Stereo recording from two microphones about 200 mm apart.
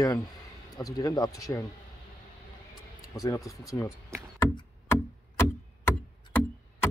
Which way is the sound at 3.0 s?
15° left (ahead or behind).